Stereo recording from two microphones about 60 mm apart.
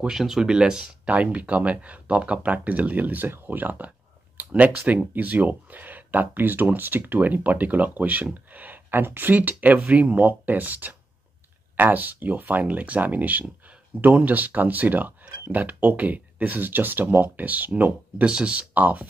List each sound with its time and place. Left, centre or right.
0.1 s speech: centre
1.0 s speech: right